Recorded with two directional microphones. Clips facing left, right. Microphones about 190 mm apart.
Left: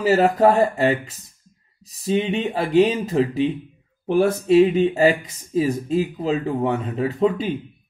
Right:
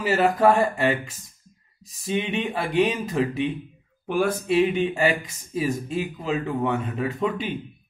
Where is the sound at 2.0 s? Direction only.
30° left (ahead or behind).